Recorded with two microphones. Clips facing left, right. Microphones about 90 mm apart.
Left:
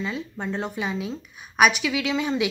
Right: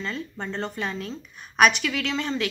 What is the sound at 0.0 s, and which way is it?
A woman's voice, 10° left (ahead or behind).